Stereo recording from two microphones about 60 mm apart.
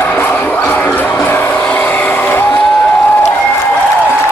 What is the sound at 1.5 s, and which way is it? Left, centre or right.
Vehicle, centre.